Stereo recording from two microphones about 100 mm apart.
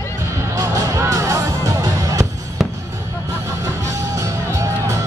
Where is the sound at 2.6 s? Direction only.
5° right (ahead or behind).